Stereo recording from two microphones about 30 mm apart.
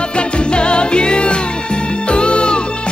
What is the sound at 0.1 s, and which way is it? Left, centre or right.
Music, left.